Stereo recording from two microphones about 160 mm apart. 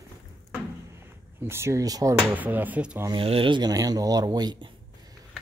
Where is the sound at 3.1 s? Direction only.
35° right (ahead or behind).